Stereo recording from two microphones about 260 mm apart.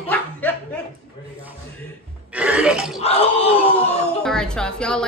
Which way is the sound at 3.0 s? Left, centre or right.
Left.